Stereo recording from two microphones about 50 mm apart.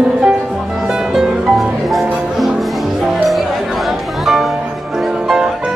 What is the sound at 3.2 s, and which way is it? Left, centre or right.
Music, centre.